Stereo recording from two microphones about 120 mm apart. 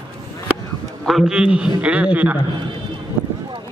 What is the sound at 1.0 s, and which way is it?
A man's voice, 5° right (ahead or behind).